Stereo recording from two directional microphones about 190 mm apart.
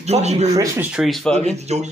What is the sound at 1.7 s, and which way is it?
Speech, 35° right (ahead or behind).